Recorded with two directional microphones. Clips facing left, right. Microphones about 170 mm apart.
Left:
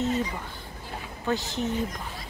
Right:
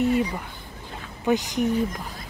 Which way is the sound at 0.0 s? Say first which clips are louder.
Right 5 dB; 15° right (ahead or behind).